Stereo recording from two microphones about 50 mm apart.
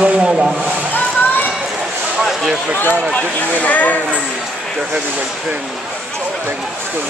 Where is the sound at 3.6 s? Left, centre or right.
Left.